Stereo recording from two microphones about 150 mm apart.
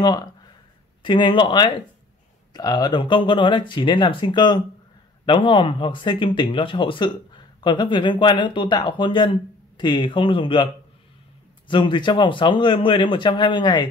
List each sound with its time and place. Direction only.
1.0 s speech: 30° left (ahead or behind)